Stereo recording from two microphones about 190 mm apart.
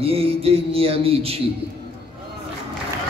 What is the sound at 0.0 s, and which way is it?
A man's voice, 30° right (ahead or behind).